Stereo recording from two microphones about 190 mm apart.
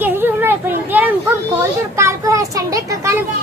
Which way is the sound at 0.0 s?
10° right (ahead or behind).